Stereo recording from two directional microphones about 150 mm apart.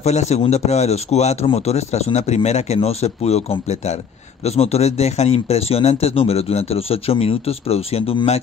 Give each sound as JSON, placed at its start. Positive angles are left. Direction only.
{"t": 0.0, "sound": "speech", "side_deg": 45}